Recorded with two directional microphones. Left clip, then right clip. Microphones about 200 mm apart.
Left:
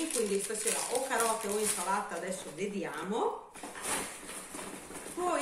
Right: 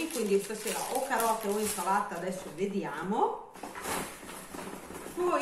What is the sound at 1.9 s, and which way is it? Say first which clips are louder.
A woman's voice: right 3 dB; centre (ahead or behind).